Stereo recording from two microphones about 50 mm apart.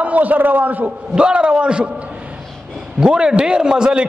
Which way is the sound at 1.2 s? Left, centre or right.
Centre.